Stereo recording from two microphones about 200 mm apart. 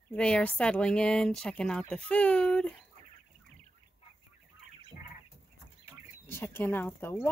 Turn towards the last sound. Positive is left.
turn(degrees=10)  # may be behind; listen again after turning